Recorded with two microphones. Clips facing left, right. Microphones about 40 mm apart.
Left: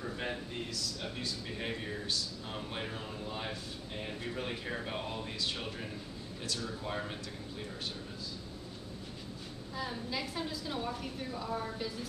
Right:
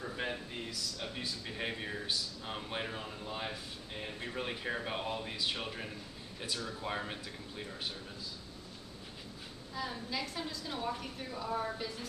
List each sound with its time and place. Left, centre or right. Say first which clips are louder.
0.0 s a sound: even; centre
1.2 s speech: right 1 dB; centre
9.8 s a woman's voice: left 1 dB; centre